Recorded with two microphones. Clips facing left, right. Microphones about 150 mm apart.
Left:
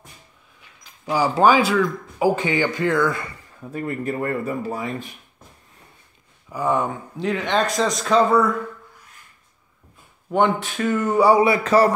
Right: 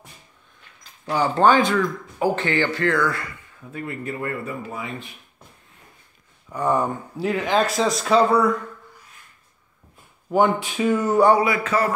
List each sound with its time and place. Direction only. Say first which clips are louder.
1.0 s speech: left 1 dB; 10° left (ahead or behind)
3.7 s speech: left 4 dB; 40° left (ahead or behind)
6.5 s speech: even; centre (ahead or behind)
10.6 s a sound: right 1 dB; 10° right (ahead or behind)
11.3 s speech: left 5 dB; 30° left (ahead or behind)